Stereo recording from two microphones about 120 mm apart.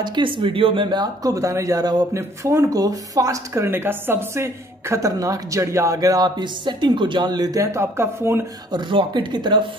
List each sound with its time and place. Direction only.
0.0 s speech: 40° right (ahead or behind); by 8.5 s 20° right (ahead or behind)
8.7 s speech: 40° right (ahead or behind)